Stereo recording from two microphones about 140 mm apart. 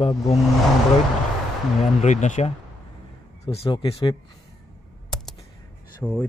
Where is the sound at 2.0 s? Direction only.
60° left (ahead or behind).